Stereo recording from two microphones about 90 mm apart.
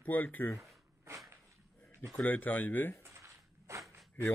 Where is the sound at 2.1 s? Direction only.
20° left (ahead or behind).